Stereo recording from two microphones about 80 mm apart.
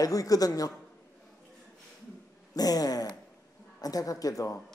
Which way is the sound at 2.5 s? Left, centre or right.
Left.